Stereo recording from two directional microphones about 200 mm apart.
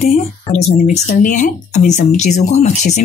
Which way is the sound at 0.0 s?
35° left (ahead or behind).